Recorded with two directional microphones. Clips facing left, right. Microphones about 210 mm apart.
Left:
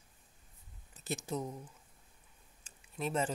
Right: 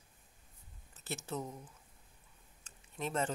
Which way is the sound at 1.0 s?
15° left (ahead or behind).